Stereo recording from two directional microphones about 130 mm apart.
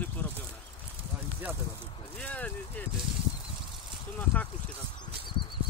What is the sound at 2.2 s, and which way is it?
Speech, 10° left (ahead or behind).